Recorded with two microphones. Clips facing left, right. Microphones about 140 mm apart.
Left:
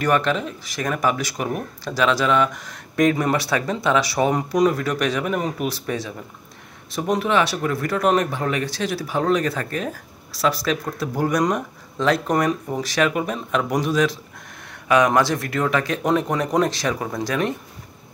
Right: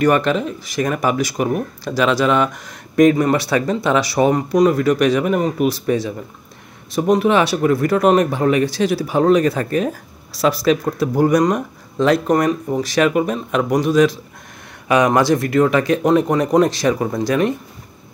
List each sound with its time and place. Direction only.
0.0 s speech: 5° right (ahead or behind)